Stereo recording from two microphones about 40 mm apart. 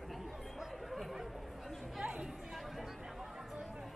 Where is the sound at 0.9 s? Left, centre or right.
Centre.